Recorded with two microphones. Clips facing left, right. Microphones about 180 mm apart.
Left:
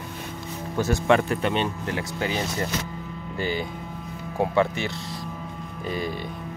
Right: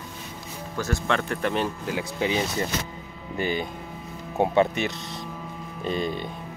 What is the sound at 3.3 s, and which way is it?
Speech, 20° right (ahead or behind).